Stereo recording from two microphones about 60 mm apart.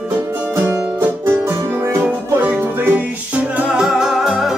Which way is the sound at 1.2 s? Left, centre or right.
Right.